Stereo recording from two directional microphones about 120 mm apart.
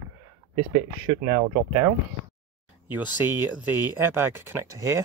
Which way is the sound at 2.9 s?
15° right (ahead or behind).